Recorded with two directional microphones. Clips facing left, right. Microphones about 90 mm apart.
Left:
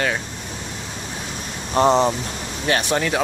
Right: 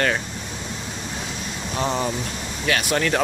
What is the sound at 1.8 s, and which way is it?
Speech, 30° left (ahead or behind).